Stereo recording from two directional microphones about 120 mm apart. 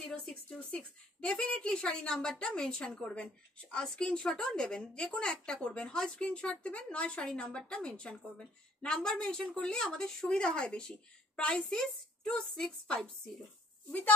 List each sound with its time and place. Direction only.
0.1 s speech: 5° left (ahead or behind)